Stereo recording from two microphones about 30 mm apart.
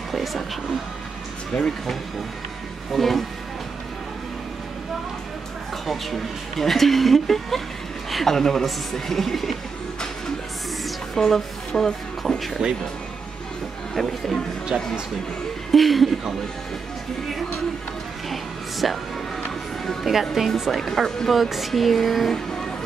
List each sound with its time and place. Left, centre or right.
0.1 s speech: centre
1.5 s speech: left
2.9 s speech: centre
5.9 s speech: centre
8.4 s speech: centre
11.1 s speech: centre
13.9 s speech: centre
14.7 s speech: right
15.7 s speech: centre
18.3 s music: centre
20.1 s speech: centre
20.7 s speech: centre
22.3 s speech: centre